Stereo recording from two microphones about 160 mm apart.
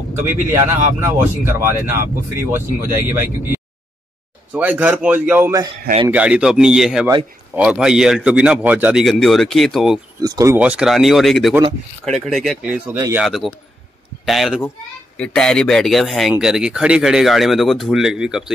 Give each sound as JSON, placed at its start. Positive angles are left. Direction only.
{"t": 0.5, "sound": "speech", "side_deg": -15}
{"t": 10.2, "sound": "speech", "side_deg": -25}
{"t": 10.5, "sound": "speech", "side_deg": -10}